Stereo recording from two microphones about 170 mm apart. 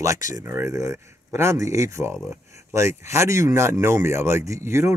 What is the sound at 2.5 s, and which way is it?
Speech, 15° right (ahead or behind).